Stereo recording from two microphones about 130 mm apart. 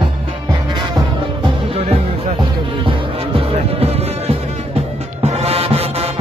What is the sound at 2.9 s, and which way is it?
Music, 45° right (ahead or behind).